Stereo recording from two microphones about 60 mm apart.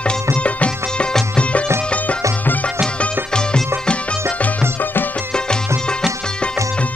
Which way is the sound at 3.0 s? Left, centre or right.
Centre.